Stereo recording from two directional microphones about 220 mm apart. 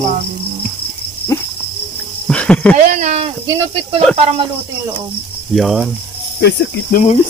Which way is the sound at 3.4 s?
20° right (ahead or behind).